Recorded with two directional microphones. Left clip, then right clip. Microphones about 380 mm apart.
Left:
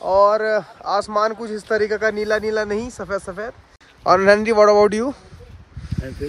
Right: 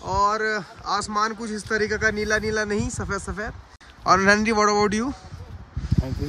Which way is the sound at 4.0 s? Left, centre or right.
Centre.